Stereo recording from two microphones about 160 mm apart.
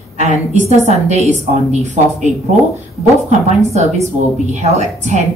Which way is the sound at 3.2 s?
45° right (ahead or behind).